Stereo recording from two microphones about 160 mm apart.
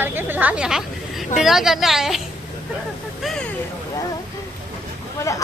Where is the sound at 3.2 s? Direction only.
5° left (ahead or behind).